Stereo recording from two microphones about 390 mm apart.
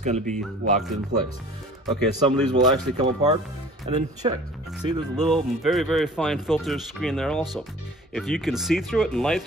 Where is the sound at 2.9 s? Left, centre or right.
Centre.